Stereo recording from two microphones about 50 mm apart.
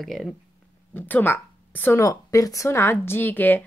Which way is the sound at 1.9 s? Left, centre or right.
Left.